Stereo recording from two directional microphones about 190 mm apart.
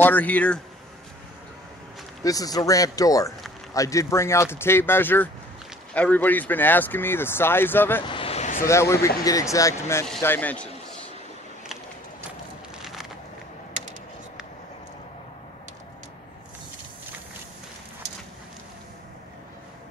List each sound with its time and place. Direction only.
0.0 s speech: 10° left (ahead or behind)
2.2 s speech: 20° left (ahead or behind)
8.1 s a sound: 30° left (ahead or behind)
8.6 s speech: 15° left (ahead or behind)